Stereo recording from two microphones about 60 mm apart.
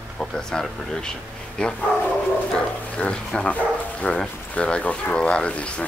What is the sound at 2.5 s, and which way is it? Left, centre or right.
Pig, centre.